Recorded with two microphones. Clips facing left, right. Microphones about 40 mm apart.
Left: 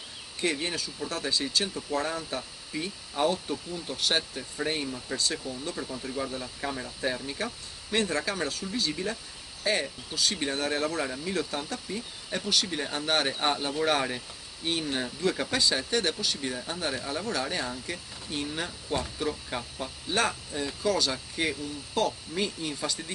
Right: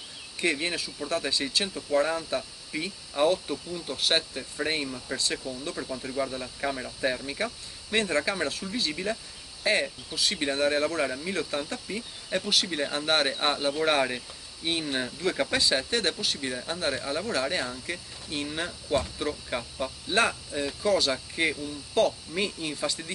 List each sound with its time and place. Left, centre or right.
0.4 s speech: centre